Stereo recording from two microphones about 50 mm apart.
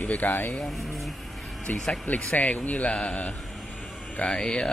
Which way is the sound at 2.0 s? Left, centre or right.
Left.